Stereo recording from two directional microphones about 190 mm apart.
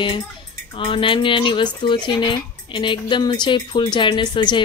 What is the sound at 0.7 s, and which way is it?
A woman's voice, 25° left (ahead or behind).